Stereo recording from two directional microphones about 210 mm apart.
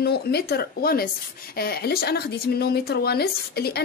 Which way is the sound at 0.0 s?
50° left (ahead or behind).